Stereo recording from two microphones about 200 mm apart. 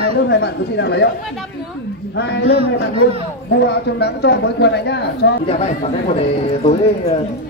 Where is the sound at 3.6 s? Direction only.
55° left (ahead or behind).